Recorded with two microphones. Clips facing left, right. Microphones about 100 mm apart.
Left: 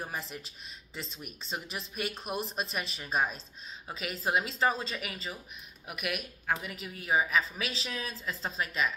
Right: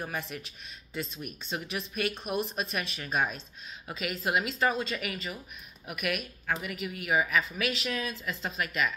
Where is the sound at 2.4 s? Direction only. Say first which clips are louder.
Right 2 dB; 25° left (ahead or behind).